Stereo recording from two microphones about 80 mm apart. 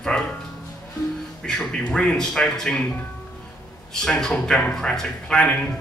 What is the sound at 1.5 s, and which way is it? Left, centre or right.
Speech, centre.